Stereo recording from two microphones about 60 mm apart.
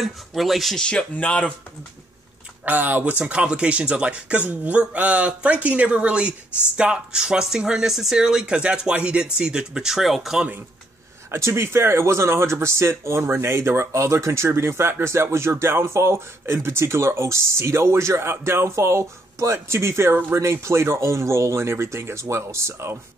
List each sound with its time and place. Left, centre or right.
0.0 s speech: centre
0.7 s speech: centre
2.6 s speech: right; by 10.4 s centre
11.3 s speech: right